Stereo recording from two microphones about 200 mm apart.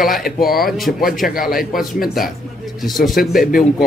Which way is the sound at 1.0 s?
45° left (ahead or behind).